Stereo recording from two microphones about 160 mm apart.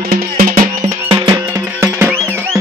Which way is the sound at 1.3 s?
15° right (ahead or behind).